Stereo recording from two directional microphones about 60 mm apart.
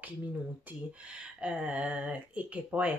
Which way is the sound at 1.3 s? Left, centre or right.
Centre.